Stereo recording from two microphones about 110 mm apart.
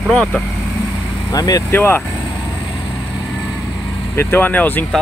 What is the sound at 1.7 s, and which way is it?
Speech, 20° left (ahead or behind).